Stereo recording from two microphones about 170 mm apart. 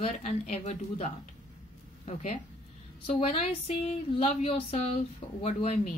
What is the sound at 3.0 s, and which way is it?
A woman's voice, 40° left (ahead or behind).